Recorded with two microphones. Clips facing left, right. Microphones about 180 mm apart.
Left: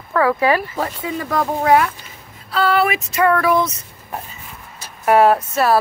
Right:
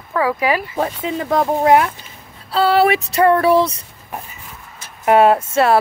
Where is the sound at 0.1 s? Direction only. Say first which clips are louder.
Left 2 dB; 15° right (ahead or behind).